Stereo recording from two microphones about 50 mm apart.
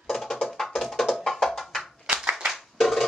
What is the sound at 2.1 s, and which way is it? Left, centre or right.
Clapping, right.